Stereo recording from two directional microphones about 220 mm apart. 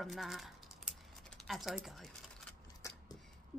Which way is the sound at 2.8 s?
15° left (ahead or behind).